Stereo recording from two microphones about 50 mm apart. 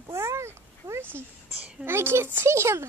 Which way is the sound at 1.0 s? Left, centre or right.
Right.